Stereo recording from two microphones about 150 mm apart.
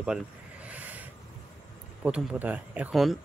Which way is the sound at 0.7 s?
10° right (ahead or behind).